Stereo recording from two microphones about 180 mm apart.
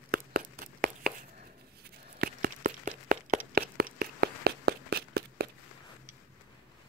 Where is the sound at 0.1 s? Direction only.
55° right (ahead or behind).